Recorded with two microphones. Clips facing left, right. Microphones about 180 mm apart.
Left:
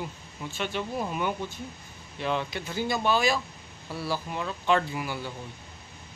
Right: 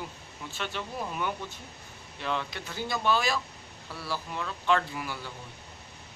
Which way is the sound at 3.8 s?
20° left (ahead or behind).